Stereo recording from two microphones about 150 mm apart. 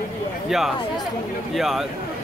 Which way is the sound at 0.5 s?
5° right (ahead or behind).